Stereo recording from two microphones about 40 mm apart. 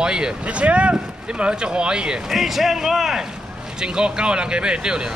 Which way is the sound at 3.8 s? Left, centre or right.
Right.